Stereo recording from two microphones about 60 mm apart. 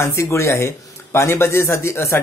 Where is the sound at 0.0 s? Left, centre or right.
Left.